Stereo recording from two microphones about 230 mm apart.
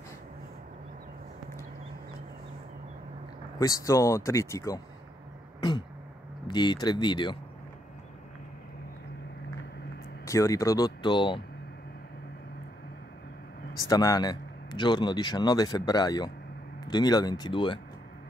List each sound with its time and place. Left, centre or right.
3.5 s speech: centre
5.6 s throat clearing: centre
6.4 s speech: centre
10.2 s speech: centre
13.8 s speech: centre